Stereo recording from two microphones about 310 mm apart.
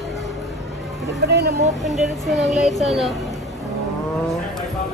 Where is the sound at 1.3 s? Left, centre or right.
Right.